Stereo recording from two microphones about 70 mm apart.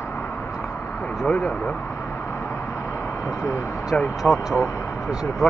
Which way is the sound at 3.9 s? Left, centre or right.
Centre.